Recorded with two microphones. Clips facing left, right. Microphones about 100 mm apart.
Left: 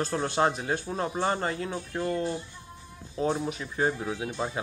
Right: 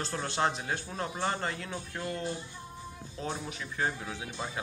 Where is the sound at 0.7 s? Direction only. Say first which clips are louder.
Left 5 dB; 25° left (ahead or behind).